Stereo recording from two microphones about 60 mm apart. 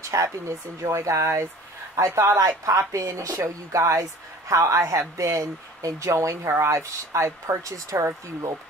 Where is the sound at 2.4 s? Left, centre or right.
Right.